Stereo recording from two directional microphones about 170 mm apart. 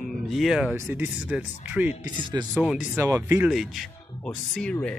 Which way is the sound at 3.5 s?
Centre (ahead or behind).